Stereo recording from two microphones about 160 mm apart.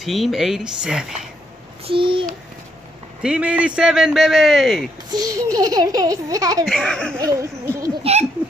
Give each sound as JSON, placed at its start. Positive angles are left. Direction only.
{"t": 0.0, "sound": "a man's voice", "side_deg": 0}
{"t": 1.9, "sound": "a child's voice", "side_deg": -30}
{"t": 3.2, "sound": "a man's voice", "side_deg": -5}
{"t": 5.1, "sound": "a sound", "side_deg": -20}
{"t": 6.6, "sound": "a man's voice", "side_deg": 0}
{"t": 7.2, "sound": "laughter", "side_deg": -20}
{"t": 8.0, "sound": "speech", "side_deg": -40}